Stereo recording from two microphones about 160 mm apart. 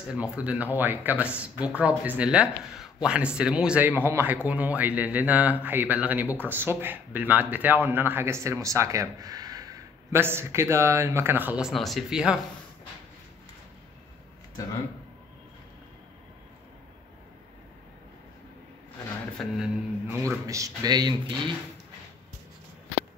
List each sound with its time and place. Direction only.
0.1 s speech: 5° right (ahead or behind)
19.4 s a sound: centre (ahead or behind)
20.1 s speech: 15° right (ahead or behind)